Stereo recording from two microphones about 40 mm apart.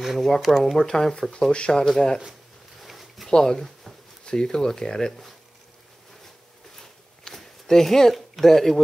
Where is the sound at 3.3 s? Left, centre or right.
Centre.